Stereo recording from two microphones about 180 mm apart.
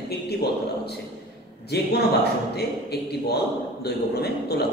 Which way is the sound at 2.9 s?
65° left (ahead or behind).